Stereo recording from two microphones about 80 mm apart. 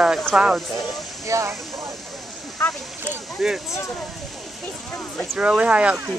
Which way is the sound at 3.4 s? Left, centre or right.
Centre.